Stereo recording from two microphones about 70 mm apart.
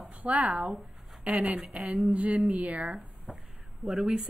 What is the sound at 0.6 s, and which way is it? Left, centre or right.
A woman's voice, centre.